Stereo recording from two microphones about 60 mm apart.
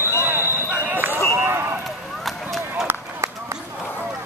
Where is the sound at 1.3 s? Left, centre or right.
Right.